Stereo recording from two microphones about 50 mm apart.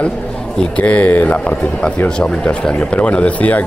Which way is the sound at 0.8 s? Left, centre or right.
Left.